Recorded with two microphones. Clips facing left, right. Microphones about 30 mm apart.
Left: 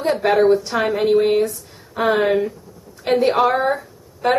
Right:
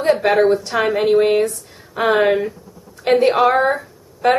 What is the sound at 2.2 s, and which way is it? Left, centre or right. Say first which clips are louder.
Speech: right 1 dB; right.